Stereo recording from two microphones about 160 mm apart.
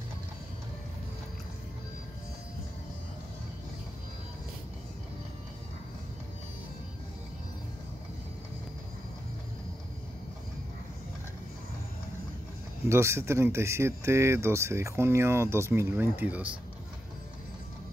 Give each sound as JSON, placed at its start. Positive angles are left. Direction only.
{"t": 12.8, "sound": "speech", "side_deg": -15}